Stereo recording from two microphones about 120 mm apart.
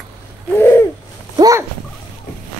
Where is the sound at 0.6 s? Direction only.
20° left (ahead or behind).